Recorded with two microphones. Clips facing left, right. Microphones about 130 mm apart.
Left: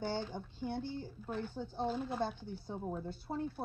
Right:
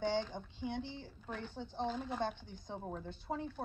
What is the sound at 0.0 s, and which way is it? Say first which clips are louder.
Female singing: right 2 dB; 10° left (ahead or behind).